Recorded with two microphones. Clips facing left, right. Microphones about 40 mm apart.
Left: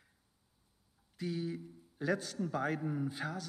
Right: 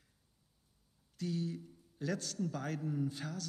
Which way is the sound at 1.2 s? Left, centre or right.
Centre.